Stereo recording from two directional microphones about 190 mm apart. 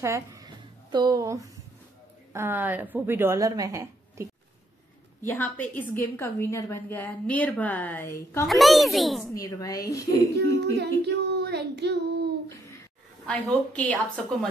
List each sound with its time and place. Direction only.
0.0 s a sound: 15° right (ahead or behind)
0.9 s a woman's voice: 20° right (ahead or behind)
5.2 s a woman's voice: 10° left (ahead or behind)
8.5 s a woman's voice: centre (ahead or behind)
9.3 s a woman's voice: 20° left (ahead or behind)
10.3 s humming: 60° right (ahead or behind)
11.0 s speech: 60° right (ahead or behind)
13.3 s a woman's voice: 5° left (ahead or behind)